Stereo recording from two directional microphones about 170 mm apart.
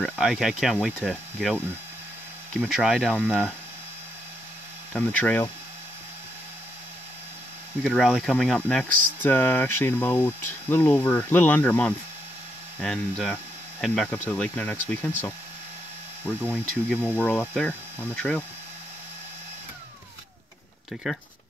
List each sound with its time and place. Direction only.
0.0 s speech: centre (ahead or behind)
2.6 s speech: centre (ahead or behind)
4.9 s speech: 10° left (ahead or behind)
7.8 s speech: centre (ahead or behind)
8.8 s speech: 55° right (ahead or behind)
9.2 s speech: 10° left (ahead or behind)
20.9 s speech: centre (ahead or behind)